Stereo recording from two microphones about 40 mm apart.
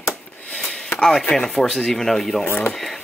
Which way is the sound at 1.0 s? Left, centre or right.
Centre.